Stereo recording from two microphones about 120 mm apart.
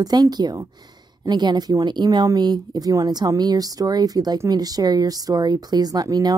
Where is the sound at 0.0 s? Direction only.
35° right (ahead or behind).